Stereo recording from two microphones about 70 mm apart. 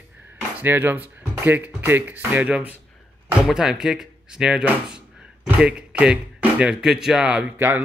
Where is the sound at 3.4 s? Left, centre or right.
Centre.